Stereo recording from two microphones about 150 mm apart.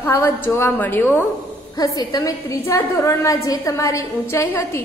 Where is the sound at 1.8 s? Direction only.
25° left (ahead or behind).